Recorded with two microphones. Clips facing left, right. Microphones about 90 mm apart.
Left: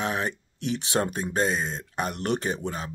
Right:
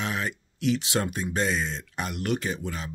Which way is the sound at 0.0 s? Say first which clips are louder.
Left 2 dB; 25° left (ahead or behind).